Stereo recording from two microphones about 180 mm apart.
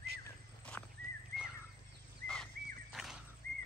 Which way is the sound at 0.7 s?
10° left (ahead or behind).